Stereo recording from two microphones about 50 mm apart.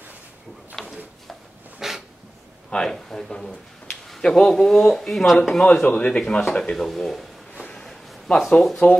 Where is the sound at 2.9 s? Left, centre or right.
Centre.